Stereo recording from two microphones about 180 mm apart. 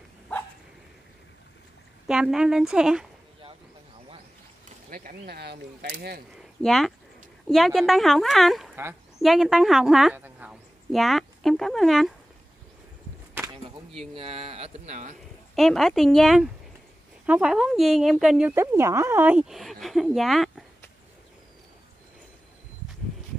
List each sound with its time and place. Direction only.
2.0 s speech: 5° right (ahead or behind)
4.8 s speech: 50° right (ahead or behind)
6.6 s a woman's voice: centre (ahead or behind)
14.1 s speech: 30° right (ahead or behind)
15.5 s speech: centre (ahead or behind)
18.5 s speech: 15° right (ahead or behind)